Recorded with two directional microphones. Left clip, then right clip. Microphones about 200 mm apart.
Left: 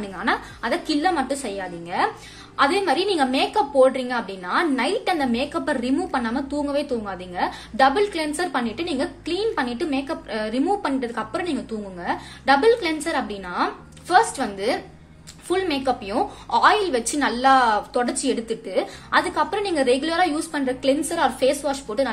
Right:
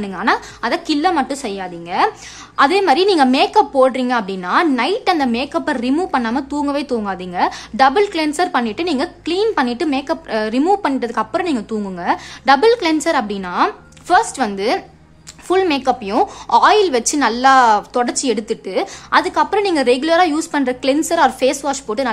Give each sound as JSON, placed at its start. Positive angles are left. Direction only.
{"t": 0.0, "sound": "a woman's voice", "side_deg": -35}